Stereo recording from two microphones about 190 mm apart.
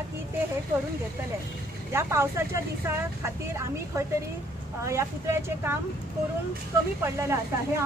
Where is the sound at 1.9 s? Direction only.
15° right (ahead or behind).